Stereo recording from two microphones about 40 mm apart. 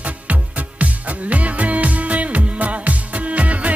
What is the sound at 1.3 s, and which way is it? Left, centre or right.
Music, right.